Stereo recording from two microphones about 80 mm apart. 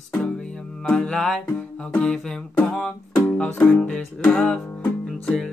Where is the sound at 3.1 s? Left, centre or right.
Centre.